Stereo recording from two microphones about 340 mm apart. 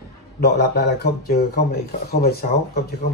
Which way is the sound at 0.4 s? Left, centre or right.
Left.